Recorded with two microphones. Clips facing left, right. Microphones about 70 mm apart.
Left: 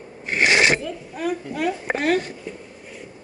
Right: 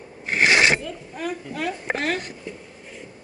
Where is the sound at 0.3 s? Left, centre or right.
Centre.